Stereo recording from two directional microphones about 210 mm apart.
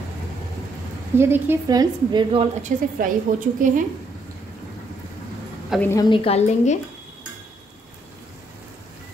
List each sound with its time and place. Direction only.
1.1 s a woman's voice: 10° right (ahead or behind)
2.6 s a woman's voice: 40° right (ahead or behind)
5.7 s a woman's voice: 10° left (ahead or behind); by 6.8 s 30° left (ahead or behind)